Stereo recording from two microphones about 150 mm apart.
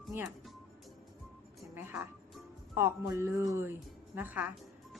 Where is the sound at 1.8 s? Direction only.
15° right (ahead or behind).